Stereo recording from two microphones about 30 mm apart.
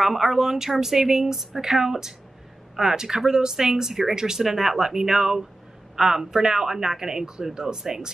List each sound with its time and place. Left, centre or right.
0.0 s speech: centre
4.4 s speech: centre